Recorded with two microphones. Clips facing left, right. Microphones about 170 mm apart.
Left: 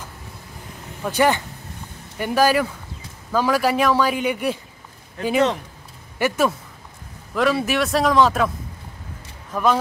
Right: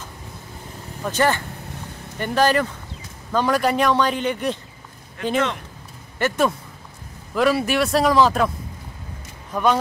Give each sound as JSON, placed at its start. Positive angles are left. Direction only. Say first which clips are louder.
{"t": 1.0, "sound": "a man's voice", "louder": "left 2 dB", "side_deg": 15}
{"t": 5.2, "sound": "speech", "louder": "left 1 dB", "side_deg": 35}
{"t": 6.1, "sound": "a man's voice", "louder": "even", "side_deg": 10}
{"t": 9.5, "sound": "speech", "louder": "even", "side_deg": 0}